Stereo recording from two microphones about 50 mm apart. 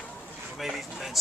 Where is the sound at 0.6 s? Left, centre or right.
Centre.